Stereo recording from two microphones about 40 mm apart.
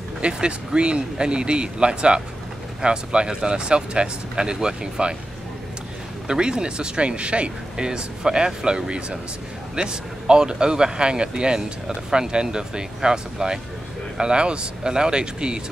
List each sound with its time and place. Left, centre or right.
0.2 s speech: right
6.2 s speech: centre